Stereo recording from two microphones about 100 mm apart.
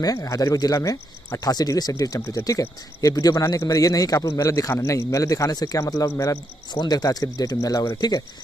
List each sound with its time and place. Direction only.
0.0 s speech: 35° left (ahead or behind)